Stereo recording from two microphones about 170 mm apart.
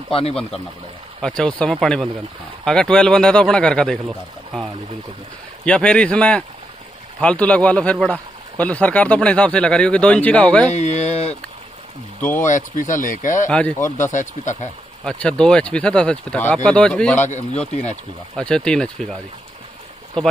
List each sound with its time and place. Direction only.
0.1 s speech: 35° left (ahead or behind)
1.2 s speech: 5° left (ahead or behind)
10.7 s speech: 45° left (ahead or behind)
12.2 s speech: 10° left (ahead or behind)
12.4 s speech: 50° left (ahead or behind)
13.5 s speech: 5° left (ahead or behind)
13.8 s speech: 50° left (ahead or behind)
15.0 s speech: 5° left (ahead or behind)
18.3 s speech: 5° left (ahead or behind)